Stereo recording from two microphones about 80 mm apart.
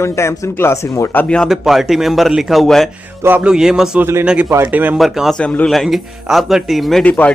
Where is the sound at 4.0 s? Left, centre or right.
Right.